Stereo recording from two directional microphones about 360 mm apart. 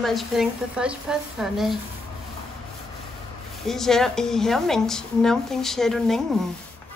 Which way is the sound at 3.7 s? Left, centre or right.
Centre.